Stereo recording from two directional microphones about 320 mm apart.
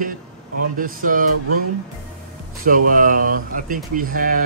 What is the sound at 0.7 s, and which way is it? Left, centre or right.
Speech, right.